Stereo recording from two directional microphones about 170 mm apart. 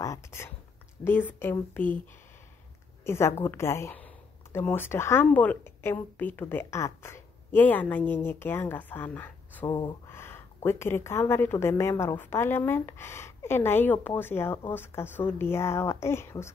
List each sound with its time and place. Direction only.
0.0 s speech: 15° left (ahead or behind)
3.0 s speech: 15° left (ahead or behind)
9.7 s speech: 25° left (ahead or behind)
10.0 s speech: 15° left (ahead or behind)